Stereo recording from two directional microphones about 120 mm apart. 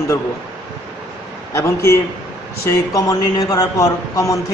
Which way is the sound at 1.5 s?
25° left (ahead or behind).